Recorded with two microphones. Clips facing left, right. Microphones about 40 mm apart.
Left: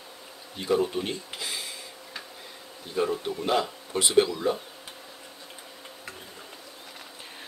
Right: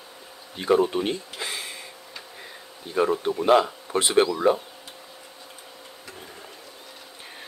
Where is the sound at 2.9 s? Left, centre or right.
Right.